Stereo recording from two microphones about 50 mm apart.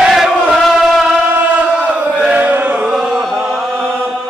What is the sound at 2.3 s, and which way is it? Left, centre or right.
Chant, right.